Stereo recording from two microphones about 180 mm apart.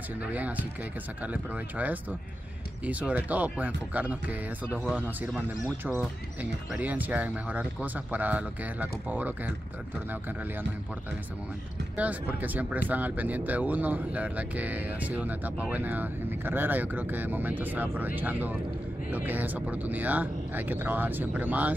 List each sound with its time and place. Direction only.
0.3 s speech: 10° right (ahead or behind)
5.9 s speech: 10° right (ahead or behind)
12.0 s speech: 10° right (ahead or behind)